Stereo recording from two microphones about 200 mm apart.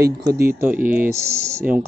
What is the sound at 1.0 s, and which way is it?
Speech, 50° right (ahead or behind).